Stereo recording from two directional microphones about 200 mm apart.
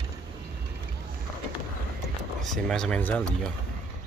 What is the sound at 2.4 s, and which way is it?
Speech, centre (ahead or behind).